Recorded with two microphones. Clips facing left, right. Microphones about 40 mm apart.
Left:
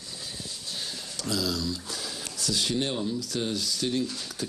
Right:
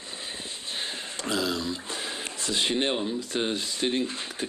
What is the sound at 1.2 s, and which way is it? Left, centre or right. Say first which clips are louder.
Speech: right 1 dB; right.